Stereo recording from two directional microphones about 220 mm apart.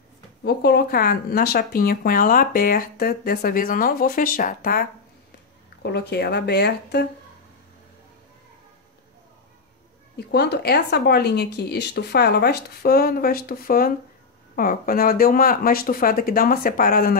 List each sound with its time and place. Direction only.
0.4 s speech: 45° left (ahead or behind)
10.1 s speech: 50° left (ahead or behind)